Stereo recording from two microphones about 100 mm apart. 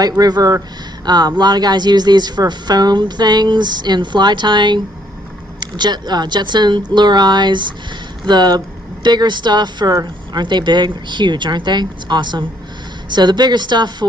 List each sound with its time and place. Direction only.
0.2 s a woman's voice: 35° right (ahead or behind)